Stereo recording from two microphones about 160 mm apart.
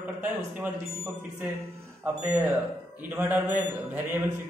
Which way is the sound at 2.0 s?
5° right (ahead or behind).